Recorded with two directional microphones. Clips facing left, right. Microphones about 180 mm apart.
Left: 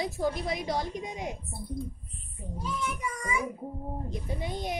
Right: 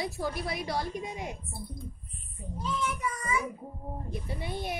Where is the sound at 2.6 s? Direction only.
10° left (ahead or behind).